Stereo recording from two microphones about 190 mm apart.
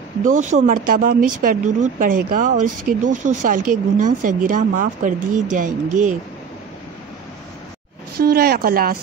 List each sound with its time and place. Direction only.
0.2 s speech: 40° right (ahead or behind)
8.2 s speech: 55° right (ahead or behind)